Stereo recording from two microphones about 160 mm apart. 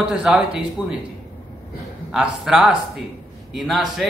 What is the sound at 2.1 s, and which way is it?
A man's voice, 5° right (ahead or behind).